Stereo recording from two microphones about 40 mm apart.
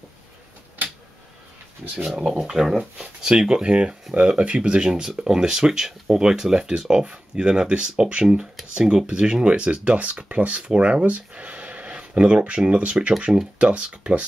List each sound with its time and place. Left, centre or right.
2.0 s speech: right